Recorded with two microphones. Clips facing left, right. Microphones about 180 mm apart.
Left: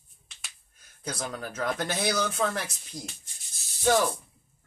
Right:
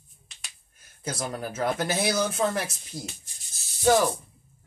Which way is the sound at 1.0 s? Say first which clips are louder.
Right 3 dB; 5° right (ahead or behind).